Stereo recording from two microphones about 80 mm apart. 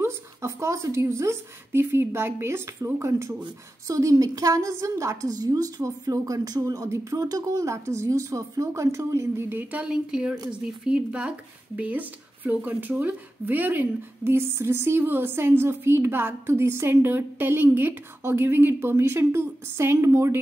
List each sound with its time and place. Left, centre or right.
0.0 s a woman's voice: right